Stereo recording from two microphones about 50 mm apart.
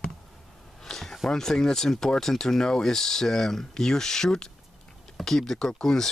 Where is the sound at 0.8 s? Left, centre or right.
Centre.